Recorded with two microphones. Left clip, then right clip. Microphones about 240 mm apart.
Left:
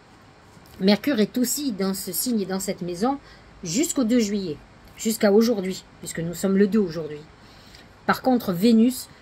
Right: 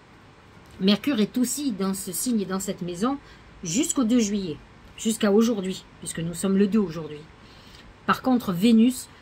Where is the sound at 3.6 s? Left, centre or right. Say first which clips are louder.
Left 1 dB; right.